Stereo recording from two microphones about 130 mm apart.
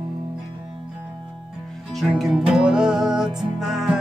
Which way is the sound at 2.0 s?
Centre (ahead or behind).